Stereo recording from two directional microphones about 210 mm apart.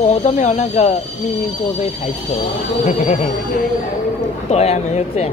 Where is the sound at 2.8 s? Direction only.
35° left (ahead or behind).